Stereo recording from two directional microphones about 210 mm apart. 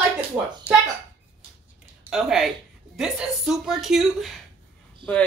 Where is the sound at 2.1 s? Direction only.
Centre (ahead or behind).